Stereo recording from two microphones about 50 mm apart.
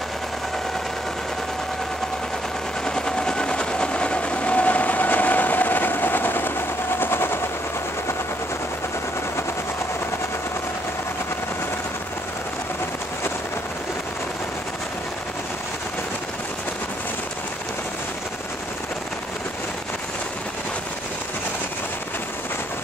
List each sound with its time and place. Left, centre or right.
2.9 s train: centre; by 7.3 s left